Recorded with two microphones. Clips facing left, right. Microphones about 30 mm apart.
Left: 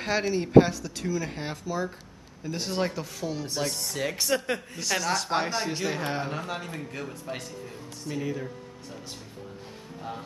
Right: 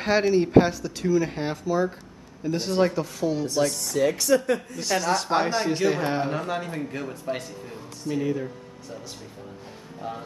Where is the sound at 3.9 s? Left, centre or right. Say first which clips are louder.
Right 8 dB; centre.